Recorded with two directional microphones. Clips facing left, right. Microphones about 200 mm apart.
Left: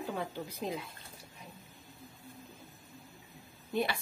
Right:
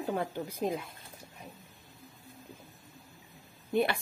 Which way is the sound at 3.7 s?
55° right (ahead or behind).